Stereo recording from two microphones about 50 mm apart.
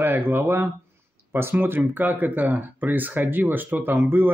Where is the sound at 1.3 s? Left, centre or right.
Right.